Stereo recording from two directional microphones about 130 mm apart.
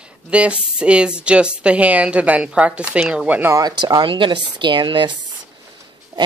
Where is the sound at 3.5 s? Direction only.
30° right (ahead or behind).